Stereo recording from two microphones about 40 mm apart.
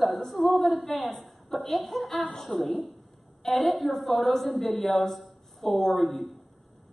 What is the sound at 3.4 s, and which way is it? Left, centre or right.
A woman's voice, centre.